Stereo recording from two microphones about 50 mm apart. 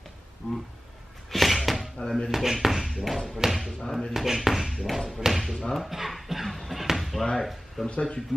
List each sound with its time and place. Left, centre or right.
1.3 s a sound: centre
2.3 s speech: centre
3.8 s speech: centre
4.1 s speech: centre
4.8 s speech: centre
7.9 s speech: centre